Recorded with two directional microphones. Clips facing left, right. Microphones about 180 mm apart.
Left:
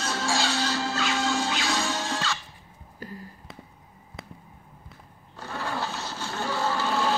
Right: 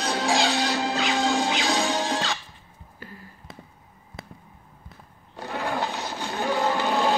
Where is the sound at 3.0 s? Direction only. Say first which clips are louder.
Left 4 dB; 40° left (ahead or behind).